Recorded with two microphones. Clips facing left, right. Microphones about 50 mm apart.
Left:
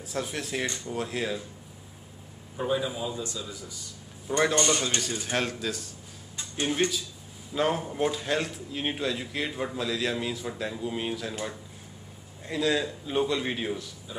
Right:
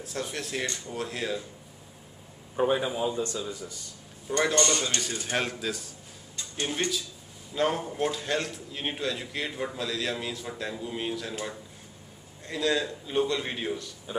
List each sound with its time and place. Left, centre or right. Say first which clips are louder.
0.0 s a man's voice: left 1 dB; centre
2.5 s speech: right 3 dB; right
4.3 s speech: left 1 dB; centre
5.1 s a man's voice: left 1 dB; centre
6.3 s a sound: left 2 dB; centre
6.7 s a man's voice: left 4 dB; centre